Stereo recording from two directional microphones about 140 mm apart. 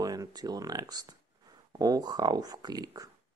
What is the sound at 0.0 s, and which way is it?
Speech, 25° right (ahead or behind).